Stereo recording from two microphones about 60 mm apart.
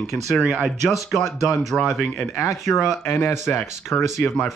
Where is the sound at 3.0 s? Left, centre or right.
Left.